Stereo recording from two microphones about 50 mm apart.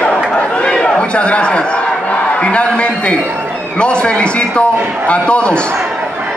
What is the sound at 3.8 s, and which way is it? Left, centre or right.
A man's voice, left.